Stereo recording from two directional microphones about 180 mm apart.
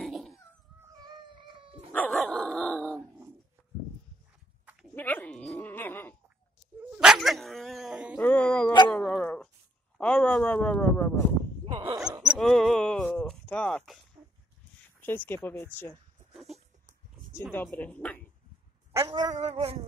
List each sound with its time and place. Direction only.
0.0 s cat: centre (ahead or behind)
1.0 s music: 25° right (ahead or behind)
1.9 s dog: 10° left (ahead or behind)
4.9 s dog: 10° left (ahead or behind)
6.9 s dog: 5° right (ahead or behind)
8.2 s a sound: 10° left (ahead or behind)
8.9 s dog: 5° left (ahead or behind)
9.9 s a sound: 5° left (ahead or behind)
11.6 s dog: 30° right (ahead or behind)
12.3 s a sound: centre (ahead or behind)
15.0 s speech: 10° left (ahead or behind)
17.5 s speech: 10° left (ahead or behind)
18.9 s cat: 20° right (ahead or behind)
19.4 s a sound: 30° right (ahead or behind)